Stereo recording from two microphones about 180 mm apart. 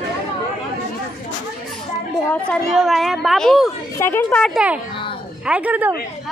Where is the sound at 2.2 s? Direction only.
10° left (ahead or behind).